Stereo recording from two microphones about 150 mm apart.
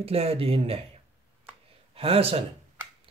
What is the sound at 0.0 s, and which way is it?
Speech, 40° right (ahead or behind).